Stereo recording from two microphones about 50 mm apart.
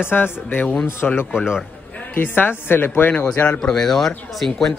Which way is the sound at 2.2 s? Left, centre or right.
Left.